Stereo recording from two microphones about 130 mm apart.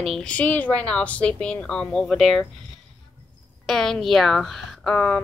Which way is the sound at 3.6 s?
Centre (ahead or behind).